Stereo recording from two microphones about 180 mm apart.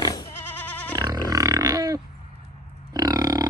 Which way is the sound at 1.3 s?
20° right (ahead or behind).